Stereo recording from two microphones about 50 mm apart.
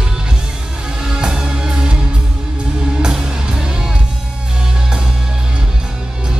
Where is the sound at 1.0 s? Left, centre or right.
Centre.